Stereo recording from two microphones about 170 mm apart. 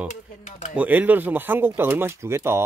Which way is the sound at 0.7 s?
10° right (ahead or behind).